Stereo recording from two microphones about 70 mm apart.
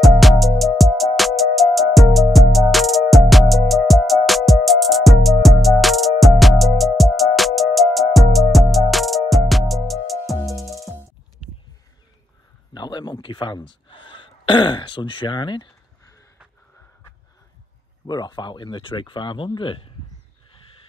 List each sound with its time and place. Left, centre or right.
0.0 s music: centre
12.7 s a sound: left
15.0 s speech: left
15.3 s speech: left
18.0 s speech: left
18.9 s speech: left